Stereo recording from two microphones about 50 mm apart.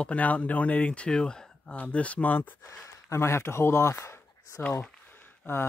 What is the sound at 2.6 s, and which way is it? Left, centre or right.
Speech, left.